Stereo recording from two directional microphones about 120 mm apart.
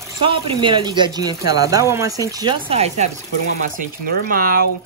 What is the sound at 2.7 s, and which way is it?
Speech, 60° right (ahead or behind).